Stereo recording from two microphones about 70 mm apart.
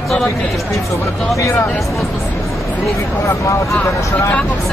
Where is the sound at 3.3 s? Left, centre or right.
Left.